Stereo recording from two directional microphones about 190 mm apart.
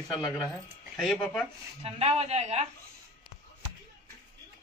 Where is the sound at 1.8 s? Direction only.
35° right (ahead or behind).